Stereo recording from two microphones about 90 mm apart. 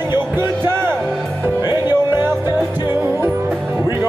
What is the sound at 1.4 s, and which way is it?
Music, 25° right (ahead or behind).